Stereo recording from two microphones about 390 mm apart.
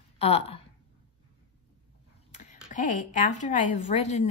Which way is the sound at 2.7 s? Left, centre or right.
Centre.